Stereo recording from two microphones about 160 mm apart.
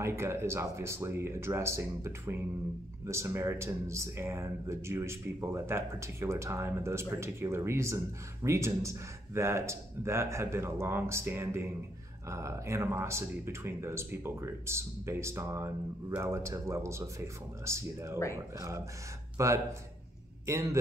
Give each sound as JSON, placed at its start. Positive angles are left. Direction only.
{"t": 0.0, "sound": "speech", "side_deg": -15}
{"t": 19.3, "sound": "a man's voice", "side_deg": -20}